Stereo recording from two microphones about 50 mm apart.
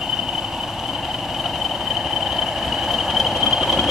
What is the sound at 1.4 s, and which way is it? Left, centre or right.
Vehicle, centre.